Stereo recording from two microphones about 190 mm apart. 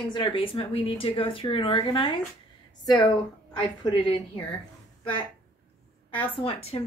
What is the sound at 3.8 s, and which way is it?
Speech, 25° left (ahead or behind).